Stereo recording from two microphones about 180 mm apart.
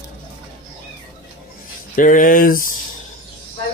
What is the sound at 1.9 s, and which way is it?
Speech, 50° left (ahead or behind).